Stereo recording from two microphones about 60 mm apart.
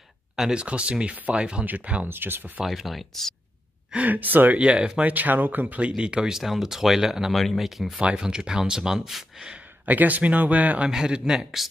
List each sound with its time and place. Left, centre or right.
0.4 s speech: centre
2.0 s speech: right
2.6 s speech: centre
3.9 s speech: right
5.1 s speech: right; by 8.0 s centre
8.0 s speech: centre
9.8 s speech: right
10.9 s speech: centre